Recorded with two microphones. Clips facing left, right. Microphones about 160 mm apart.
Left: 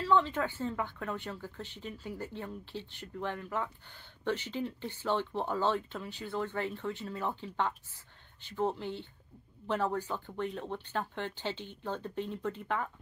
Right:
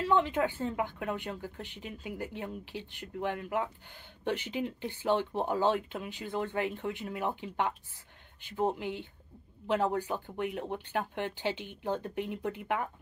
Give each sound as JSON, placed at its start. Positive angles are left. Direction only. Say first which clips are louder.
{"t": 0.0, "sound": "speech", "louder": "right 1 dB", "side_deg": -15}